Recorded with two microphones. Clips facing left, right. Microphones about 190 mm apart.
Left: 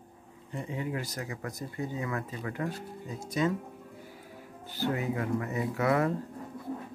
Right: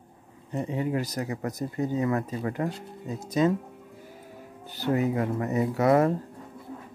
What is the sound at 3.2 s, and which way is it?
Speech, 20° right (ahead or behind).